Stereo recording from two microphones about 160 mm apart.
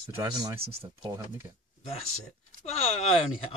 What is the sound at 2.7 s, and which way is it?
Speech, 40° left (ahead or behind).